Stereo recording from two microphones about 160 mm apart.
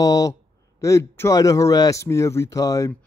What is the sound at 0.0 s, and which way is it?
A man's voice, 20° left (ahead or behind).